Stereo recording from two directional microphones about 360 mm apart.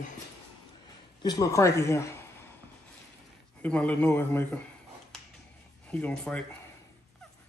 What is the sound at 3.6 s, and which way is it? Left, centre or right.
Speech, centre.